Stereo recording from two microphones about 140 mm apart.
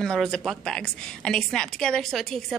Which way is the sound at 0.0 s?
5° left (ahead or behind).